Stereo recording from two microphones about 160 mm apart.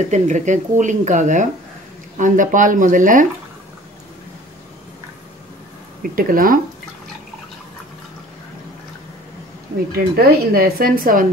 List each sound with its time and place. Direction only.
0.1 s speech: 50° right (ahead or behind)
6.0 s speech: 60° right (ahead or behind)
9.9 s speech: 70° right (ahead or behind)